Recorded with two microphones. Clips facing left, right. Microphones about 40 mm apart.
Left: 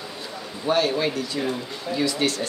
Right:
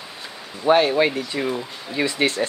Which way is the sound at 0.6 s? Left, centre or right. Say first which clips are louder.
Right 5 dB; right.